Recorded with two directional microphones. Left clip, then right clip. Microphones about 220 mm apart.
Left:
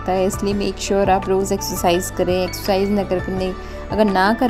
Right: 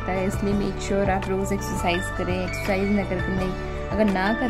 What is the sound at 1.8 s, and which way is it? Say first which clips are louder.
Speech: left 8 dB; 20° left (ahead or behind).